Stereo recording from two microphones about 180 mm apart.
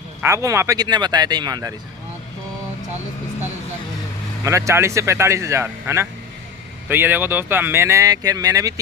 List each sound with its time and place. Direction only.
0.2 s speech: 15° right (ahead or behind)
4.5 s speech: 15° right (ahead or behind)